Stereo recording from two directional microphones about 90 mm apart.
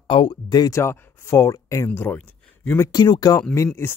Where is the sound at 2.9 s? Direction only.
50° left (ahead or behind).